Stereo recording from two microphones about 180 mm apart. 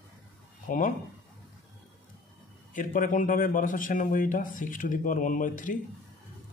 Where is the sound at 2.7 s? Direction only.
45° left (ahead or behind).